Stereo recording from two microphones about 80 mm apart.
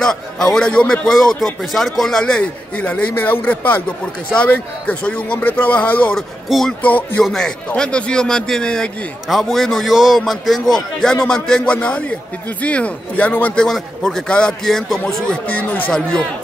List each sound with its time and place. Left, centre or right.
0.0 s a man's voice: centre
6.1 s a man's voice: centre
6.8 s a man's voice: left
7.3 s a man's voice: centre
13.7 s a man's voice: centre
15.5 s a man's voice: left